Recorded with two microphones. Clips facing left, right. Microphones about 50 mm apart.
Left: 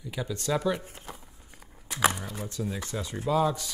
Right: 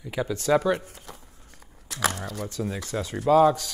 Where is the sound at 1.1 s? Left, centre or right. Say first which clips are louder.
Even; centre.